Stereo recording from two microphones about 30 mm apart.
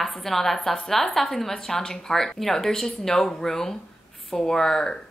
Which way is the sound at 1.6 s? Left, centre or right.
Centre.